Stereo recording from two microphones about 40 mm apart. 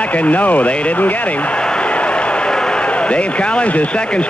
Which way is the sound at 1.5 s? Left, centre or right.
Left.